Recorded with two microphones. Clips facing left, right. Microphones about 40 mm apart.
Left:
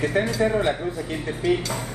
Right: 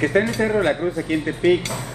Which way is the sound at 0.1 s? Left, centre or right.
Right.